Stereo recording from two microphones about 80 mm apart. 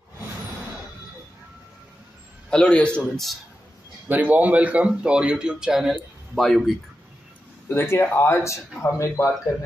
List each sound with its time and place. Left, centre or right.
2.5 s a man's voice: centre
4.1 s speech: right; by 6.7 s centre
7.7 s speech: left
8.8 s speech: left